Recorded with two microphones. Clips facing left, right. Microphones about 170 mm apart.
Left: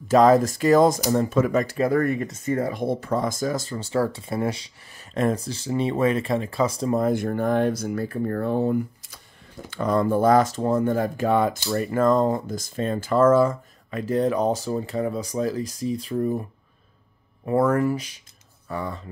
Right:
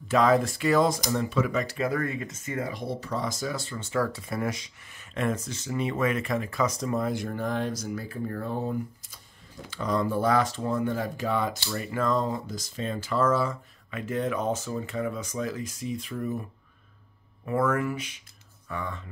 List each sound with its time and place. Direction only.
0.1 s speech: 40° left (ahead or behind)
1.9 s speech: 35° left (ahead or behind)
2.7 s speech: 55° left (ahead or behind); by 7.0 s 30° left (ahead or behind)
7.0 s speech: 50° left (ahead or behind); by 9.2 s 70° left (ahead or behind)
9.7 s speech: 55° left (ahead or behind); by 16.4 s 35° left (ahead or behind)
17.5 s speech: 35° left (ahead or behind)